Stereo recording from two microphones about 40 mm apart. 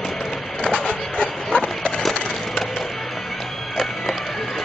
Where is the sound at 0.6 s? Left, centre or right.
Left.